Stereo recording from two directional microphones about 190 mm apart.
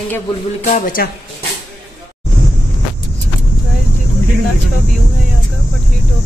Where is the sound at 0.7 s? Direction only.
45° left (ahead or behind).